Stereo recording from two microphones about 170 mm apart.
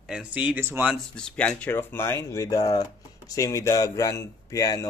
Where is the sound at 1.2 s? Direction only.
5° left (ahead or behind).